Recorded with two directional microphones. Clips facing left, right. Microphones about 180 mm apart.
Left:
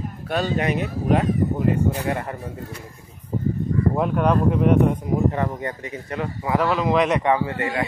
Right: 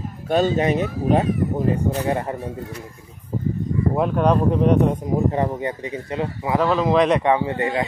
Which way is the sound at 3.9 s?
20° right (ahead or behind).